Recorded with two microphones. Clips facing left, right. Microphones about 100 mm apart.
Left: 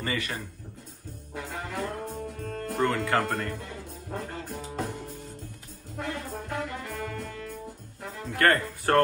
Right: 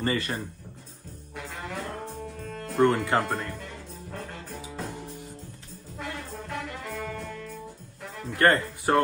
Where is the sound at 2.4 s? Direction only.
50° left (ahead or behind).